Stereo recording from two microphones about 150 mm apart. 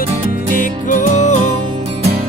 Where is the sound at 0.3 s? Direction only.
60° left (ahead or behind).